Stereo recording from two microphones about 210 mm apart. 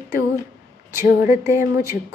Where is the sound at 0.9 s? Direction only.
10° right (ahead or behind).